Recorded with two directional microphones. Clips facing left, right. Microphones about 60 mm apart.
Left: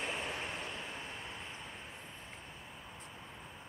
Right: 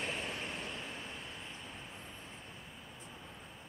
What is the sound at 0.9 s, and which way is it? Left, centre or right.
Vehicle, centre.